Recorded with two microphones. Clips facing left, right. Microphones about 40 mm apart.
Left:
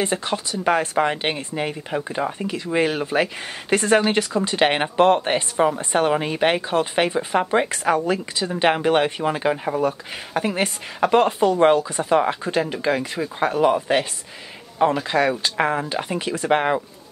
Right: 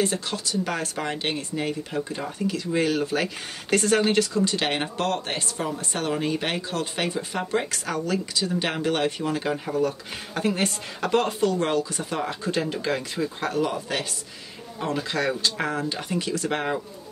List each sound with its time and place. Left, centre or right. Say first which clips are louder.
0.0 s speech: left 3 dB; left
12.5 s speech: left 4 dB; centre; by 16.8 s left